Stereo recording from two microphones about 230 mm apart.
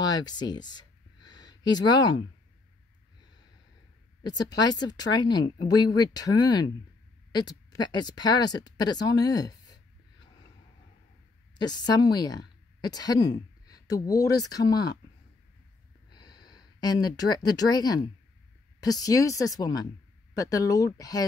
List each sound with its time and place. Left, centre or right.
0.1 s a sound: centre
4.2 s speech: centre
11.5 s a woman's voice: centre
16.1 s speech: centre